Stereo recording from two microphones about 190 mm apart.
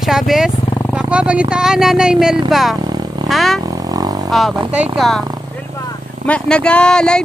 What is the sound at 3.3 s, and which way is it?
Speech, centre (ahead or behind).